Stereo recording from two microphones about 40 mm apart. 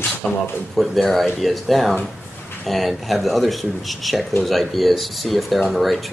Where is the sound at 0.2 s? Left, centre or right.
Centre.